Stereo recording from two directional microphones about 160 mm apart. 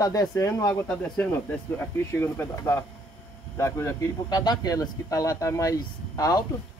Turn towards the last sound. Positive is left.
turn(degrees=20)  # may be behind; listen again after turning